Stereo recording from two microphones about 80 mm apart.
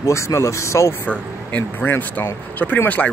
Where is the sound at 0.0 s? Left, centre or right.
Left.